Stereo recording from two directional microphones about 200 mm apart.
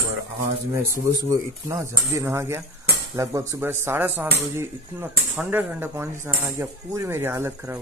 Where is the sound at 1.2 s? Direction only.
15° right (ahead or behind).